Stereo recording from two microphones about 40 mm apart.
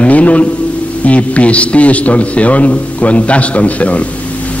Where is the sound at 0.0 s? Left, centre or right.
Left.